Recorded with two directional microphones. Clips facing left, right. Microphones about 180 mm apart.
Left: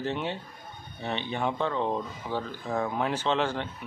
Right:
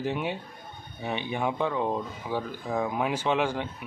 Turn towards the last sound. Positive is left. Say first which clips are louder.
# right 1 dB
turn(degrees=-10)  # may be behind; listen again after turning